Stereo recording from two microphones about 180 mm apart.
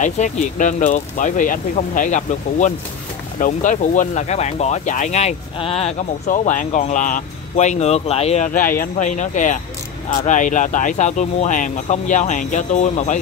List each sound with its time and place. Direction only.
0.0 s speech: 45° left (ahead or behind)
6.2 s speech: 45° left (ahead or behind)
8.5 s speech: 50° left (ahead or behind)